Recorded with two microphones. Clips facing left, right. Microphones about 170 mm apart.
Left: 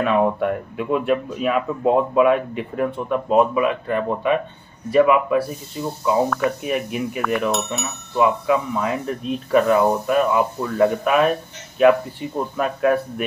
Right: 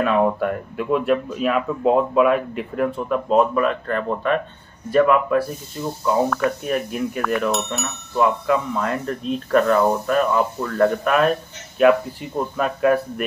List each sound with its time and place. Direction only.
0.0 s speech: centre (ahead or behind)